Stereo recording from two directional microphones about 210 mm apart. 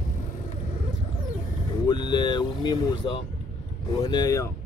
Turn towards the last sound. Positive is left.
turn(degrees=15)  # may be behind; listen again after turning